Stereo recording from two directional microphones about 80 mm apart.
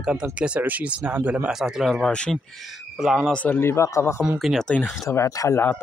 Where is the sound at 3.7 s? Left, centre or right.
Left.